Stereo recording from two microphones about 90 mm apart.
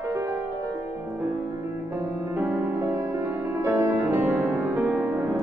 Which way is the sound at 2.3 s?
20° right (ahead or behind).